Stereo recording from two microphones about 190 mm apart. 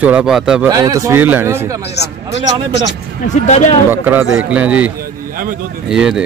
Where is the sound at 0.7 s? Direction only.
20° right (ahead or behind).